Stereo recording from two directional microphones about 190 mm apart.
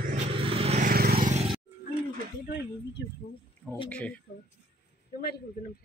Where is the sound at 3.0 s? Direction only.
60° left (ahead or behind).